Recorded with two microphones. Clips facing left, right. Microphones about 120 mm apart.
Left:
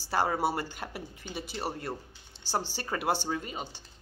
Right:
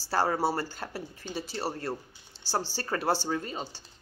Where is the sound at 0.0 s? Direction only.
15° left (ahead or behind).